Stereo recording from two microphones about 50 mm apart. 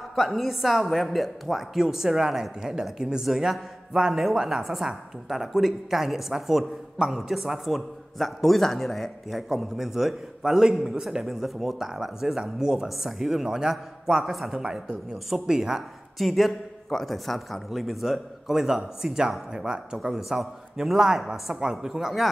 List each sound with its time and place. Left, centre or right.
0.1 s a woman's voice: centre
9.5 s a man's voice: centre
16.2 s a woman's voice: centre
20.0 s a man's voice: centre